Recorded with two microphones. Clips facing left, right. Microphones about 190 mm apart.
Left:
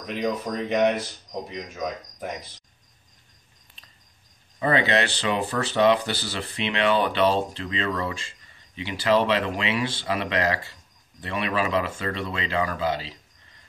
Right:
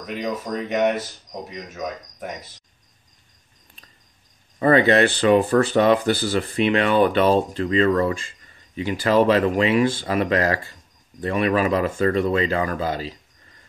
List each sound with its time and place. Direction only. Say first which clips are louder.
0.0 s speech: even; centre (ahead or behind)
4.6 s speech: right 7 dB; 50° right (ahead or behind)